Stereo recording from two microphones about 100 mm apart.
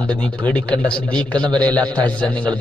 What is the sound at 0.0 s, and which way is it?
A man's voice, 10° left (ahead or behind).